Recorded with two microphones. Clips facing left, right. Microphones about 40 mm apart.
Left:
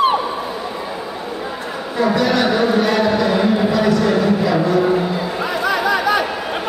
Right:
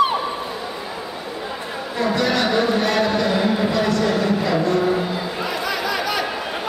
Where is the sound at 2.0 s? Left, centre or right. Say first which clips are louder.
Left 4 dB; centre.